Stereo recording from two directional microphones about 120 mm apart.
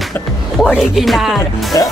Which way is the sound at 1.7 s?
25° left (ahead or behind).